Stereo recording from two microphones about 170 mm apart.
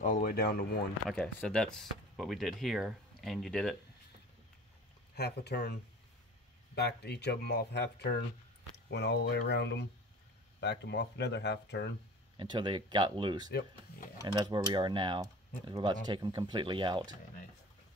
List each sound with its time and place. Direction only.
0.0 s speech: 55° left (ahead or behind)
1.0 s speech: 5° left (ahead or behind)
5.1 s speech: 75° left (ahead or behind); by 11.9 s 90° left
12.4 s speech: 30° right (ahead or behind)
13.5 s speech: 75° left (ahead or behind)
14.2 s speech: 25° right (ahead or behind)